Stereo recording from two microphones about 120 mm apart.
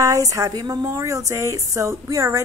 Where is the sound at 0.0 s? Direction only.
30° right (ahead or behind).